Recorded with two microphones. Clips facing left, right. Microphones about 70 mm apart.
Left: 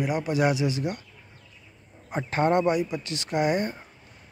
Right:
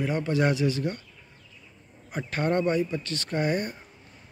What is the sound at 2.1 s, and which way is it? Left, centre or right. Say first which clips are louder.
Speech: left 4 dB; left.